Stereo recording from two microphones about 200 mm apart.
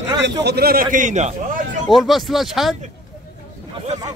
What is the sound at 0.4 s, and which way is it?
Speech, 55° right (ahead or behind).